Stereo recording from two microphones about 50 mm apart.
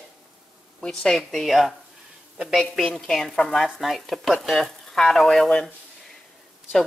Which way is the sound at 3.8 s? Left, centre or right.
Centre.